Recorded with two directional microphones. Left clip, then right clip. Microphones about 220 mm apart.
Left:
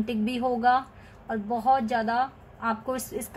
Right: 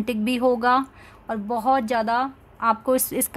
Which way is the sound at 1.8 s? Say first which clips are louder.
Right 3 dB; 50° right (ahead or behind).